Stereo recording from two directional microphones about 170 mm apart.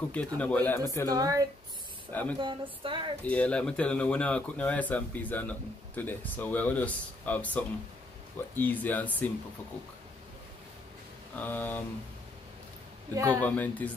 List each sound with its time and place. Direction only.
0.1 s speech: 10° left (ahead or behind)
1.0 s speech: 20° right (ahead or behind)
3.3 s speech: 5° left (ahead or behind)
11.3 s speech: 10° left (ahead or behind)
13.3 s speech: 10° left (ahead or behind)